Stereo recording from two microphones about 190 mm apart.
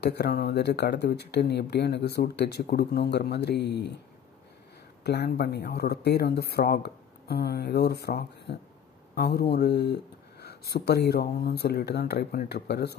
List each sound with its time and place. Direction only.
0.0 s speech: 60° left (ahead or behind)
5.0 s speech: 60° left (ahead or behind)